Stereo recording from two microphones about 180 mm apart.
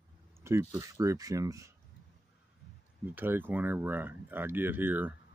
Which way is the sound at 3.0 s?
10° right (ahead or behind).